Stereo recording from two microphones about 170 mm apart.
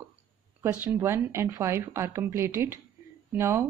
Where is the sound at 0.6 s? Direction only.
15° right (ahead or behind).